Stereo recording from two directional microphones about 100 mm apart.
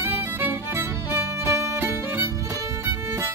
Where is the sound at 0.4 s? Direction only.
20° right (ahead or behind).